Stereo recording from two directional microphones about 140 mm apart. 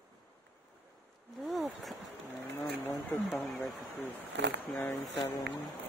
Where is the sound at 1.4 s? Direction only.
Centre (ahead or behind).